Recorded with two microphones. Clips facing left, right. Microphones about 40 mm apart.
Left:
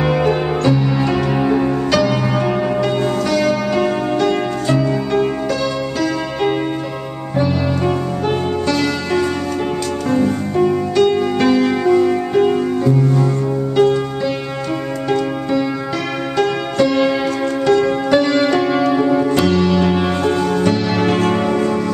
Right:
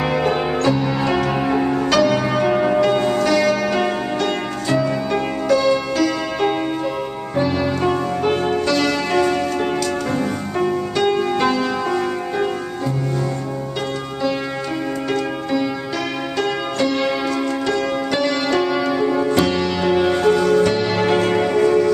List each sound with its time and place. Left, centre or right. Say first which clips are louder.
0.0 s music: left 3 dB; centre
5.9 s music: even; centre
16.3 s music: left 5 dB; centre
18.7 s music: left 4 dB; centre
19.0 s music: left 3 dB; centre